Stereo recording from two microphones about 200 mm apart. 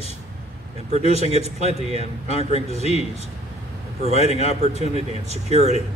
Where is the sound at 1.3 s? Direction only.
35° right (ahead or behind).